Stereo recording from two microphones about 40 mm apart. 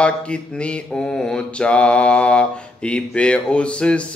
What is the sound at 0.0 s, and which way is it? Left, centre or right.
Mantra, left.